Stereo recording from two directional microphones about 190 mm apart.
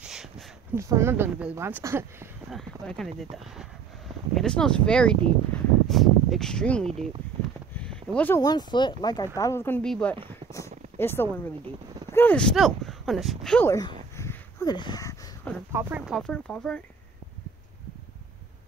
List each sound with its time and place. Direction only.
0.0 s a sound: centre (ahead or behind)
0.7 s a woman's voice: 15° right (ahead or behind)
2.5 s speech: centre (ahead or behind)
4.4 s speech: 5° left (ahead or behind)
7.7 s a sound: 5° left (ahead or behind)
8.4 s speech: 20° left (ahead or behind); by 13.7 s 5° left (ahead or behind)
13.7 s speech: 20° left (ahead or behind)
14.1 s a sound: 15° left (ahead or behind)
15.7 s speech: 10° right (ahead or behind)